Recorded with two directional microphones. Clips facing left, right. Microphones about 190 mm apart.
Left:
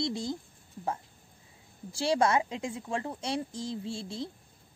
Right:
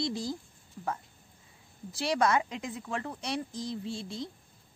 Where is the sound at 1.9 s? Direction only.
30° left (ahead or behind).